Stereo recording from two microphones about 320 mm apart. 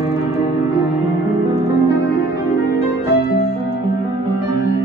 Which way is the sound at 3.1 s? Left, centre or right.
Left.